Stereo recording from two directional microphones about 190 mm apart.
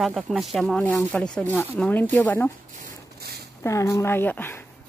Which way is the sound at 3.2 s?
55° right (ahead or behind).